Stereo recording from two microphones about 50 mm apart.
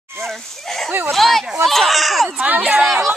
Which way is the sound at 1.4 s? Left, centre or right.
Centre.